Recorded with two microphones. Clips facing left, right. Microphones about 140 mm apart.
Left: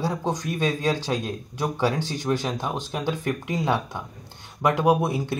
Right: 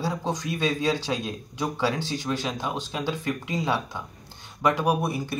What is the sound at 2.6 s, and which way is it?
Speech, 15° left (ahead or behind).